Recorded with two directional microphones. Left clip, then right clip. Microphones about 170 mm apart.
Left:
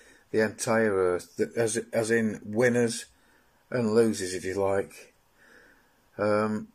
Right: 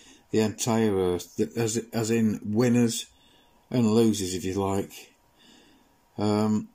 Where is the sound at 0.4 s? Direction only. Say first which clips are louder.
Left 1 dB; 15° right (ahead or behind).